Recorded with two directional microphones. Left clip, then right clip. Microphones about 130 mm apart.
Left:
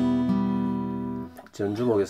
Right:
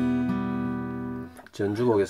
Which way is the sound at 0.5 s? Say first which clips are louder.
Left 2 dB; 25° left (ahead or behind).